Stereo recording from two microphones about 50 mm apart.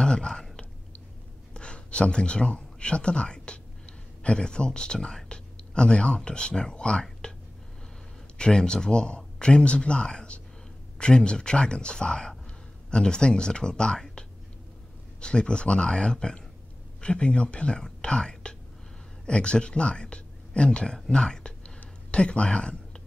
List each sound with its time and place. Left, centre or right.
0.0 s speech: centre
8.4 s speech: centre
15.1 s speech: centre